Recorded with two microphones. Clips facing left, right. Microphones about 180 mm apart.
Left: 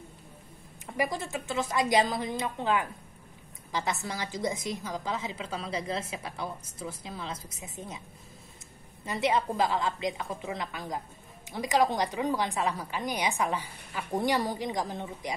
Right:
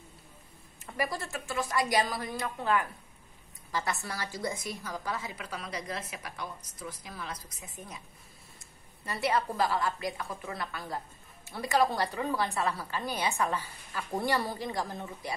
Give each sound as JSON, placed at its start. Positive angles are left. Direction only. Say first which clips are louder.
{"t": 0.9, "sound": "a woman's voice", "louder": "left 3 dB", "side_deg": 15}
{"t": 9.0, "sound": "a woman's voice", "louder": "left 2 dB", "side_deg": 20}